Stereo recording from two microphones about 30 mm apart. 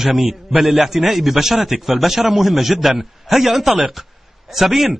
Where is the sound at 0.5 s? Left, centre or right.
Right.